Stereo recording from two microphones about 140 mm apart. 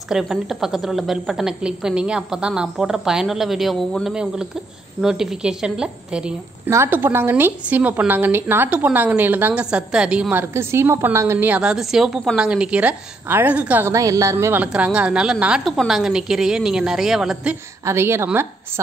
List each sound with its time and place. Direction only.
0.1 s a woman's voice: 5° right (ahead or behind)
6.7 s a woman's voice: 15° right (ahead or behind)
10.5 s a woman's voice: 20° right (ahead or behind)
17.8 s a woman's voice: 20° right (ahead or behind)